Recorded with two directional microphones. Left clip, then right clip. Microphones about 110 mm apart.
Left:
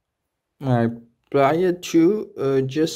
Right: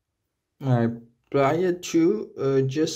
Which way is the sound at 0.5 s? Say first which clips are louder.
Left 3 dB; 40° left (ahead or behind).